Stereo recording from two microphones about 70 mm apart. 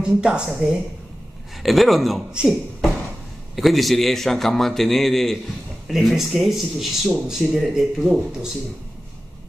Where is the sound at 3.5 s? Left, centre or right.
Centre.